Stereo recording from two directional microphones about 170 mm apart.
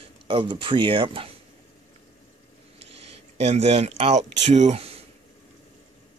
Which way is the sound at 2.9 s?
35° right (ahead or behind).